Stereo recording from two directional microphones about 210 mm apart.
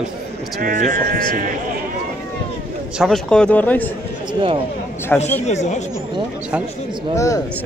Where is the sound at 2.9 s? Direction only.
Centre (ahead or behind).